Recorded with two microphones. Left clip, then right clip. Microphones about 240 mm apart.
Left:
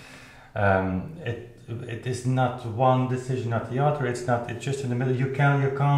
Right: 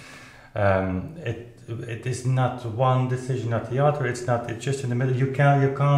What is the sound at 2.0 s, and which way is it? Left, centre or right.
Speech, right.